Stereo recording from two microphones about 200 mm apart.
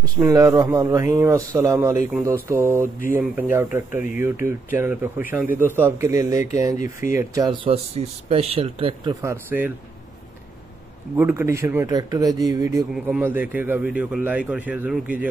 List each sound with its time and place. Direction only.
0.2 s a man's voice: 15° right (ahead or behind)
3.9 s speech: 40° left (ahead or behind)
4.2 s a man's voice: 10° right (ahead or behind)
6.8 s speech: 40° left (ahead or behind)
7.2 s speech: 20° right (ahead or behind)
11.1 s a man's voice: 10° right (ahead or behind)